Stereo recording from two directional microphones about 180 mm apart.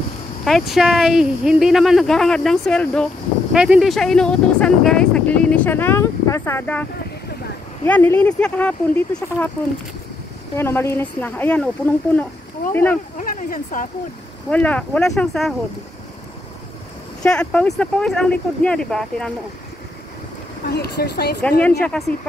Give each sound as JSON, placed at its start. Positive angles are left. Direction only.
{"t": 0.5, "sound": "speech", "side_deg": 0}
{"t": 10.5, "sound": "speech", "side_deg": 15}
{"t": 13.2, "sound": "speech", "side_deg": 50}
{"t": 14.5, "sound": "speech", "side_deg": 5}
{"t": 17.2, "sound": "speech", "side_deg": 5}
{"t": 20.6, "sound": "speech", "side_deg": 65}
{"t": 21.4, "sound": "speech", "side_deg": 5}